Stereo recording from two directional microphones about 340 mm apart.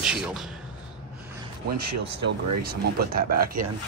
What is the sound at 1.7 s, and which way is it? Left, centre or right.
Speech, right.